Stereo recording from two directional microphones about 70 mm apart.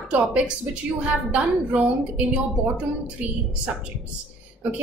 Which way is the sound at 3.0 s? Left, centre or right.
Centre.